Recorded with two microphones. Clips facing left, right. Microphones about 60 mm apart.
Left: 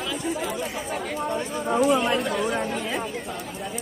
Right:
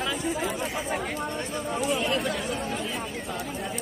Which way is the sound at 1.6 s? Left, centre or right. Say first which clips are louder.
Left 8 dB; left.